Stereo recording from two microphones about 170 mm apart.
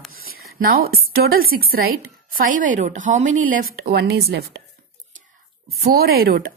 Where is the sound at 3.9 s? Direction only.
75° right (ahead or behind).